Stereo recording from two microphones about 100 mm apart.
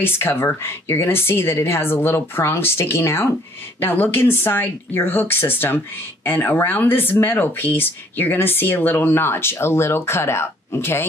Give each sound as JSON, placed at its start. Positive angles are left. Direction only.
{"t": 0.0, "sound": "speech", "side_deg": 20}